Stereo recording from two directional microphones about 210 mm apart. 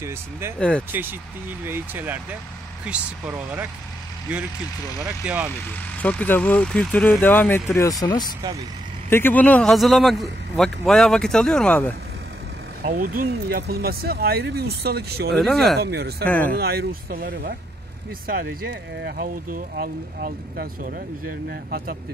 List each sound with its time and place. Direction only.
0.6 s a man's voice: 5° left (ahead or behind)
1.6 s speech: 10° right (ahead or behind)
4.9 s speech: 5° right (ahead or behind)
6.0 s speech: 10° left (ahead or behind)
9.1 s a man's voice: 10° left (ahead or behind)
12.8 s speech: 40° right (ahead or behind)
15.3 s a man's voice: centre (ahead or behind)
15.8 s speech: 50° right (ahead or behind)
16.3 s speech: 5° left (ahead or behind)
16.5 s speech: 50° right (ahead or behind)